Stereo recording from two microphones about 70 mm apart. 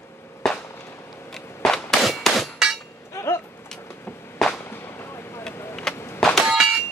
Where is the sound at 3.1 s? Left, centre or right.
Left.